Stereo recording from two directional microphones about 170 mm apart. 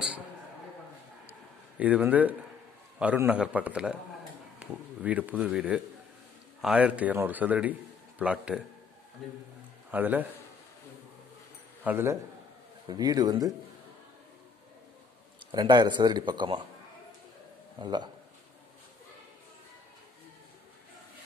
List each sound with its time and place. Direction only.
1.8 s speech: 10° right (ahead or behind)
9.8 s a man's voice: 10° right (ahead or behind)
11.8 s speech: 10° right (ahead or behind)
12.8 s speech: 25° right (ahead or behind)
15.5 s speech: 25° right (ahead or behind)
17.7 s speech: 25° right (ahead or behind)